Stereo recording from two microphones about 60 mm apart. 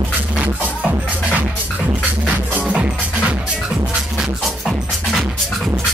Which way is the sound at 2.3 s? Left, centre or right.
Right.